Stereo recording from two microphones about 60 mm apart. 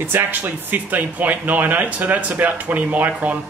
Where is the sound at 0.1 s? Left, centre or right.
Right.